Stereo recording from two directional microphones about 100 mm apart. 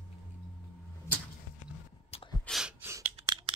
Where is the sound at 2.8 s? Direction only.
20° right (ahead or behind).